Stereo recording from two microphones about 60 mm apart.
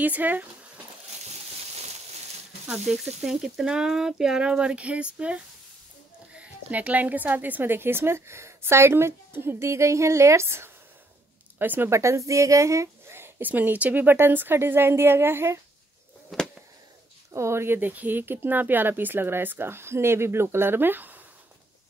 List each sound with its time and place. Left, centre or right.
0.0 s speech: right
2.7 s a woman's voice: centre; by 10.7 s right
11.5 s speech: right
11.9 s a woman's voice: right
13.1 s a sound: right
13.5 s speech: right
16.3 s a sound: centre
17.3 s a woman's voice: right
17.7 s speech: right